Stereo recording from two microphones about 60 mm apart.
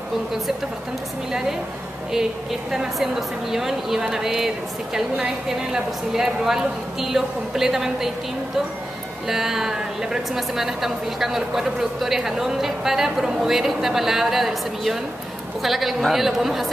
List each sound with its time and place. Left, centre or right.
2.7 s a woman's voice: centre
9.3 s a woman's voice: centre